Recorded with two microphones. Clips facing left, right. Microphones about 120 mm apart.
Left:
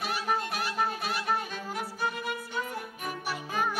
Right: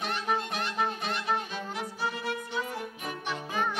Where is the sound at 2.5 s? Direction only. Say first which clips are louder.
Right 1 dB; 50° left (ahead or behind).